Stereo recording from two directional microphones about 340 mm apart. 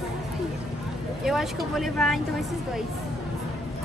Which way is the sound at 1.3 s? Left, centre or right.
Centre.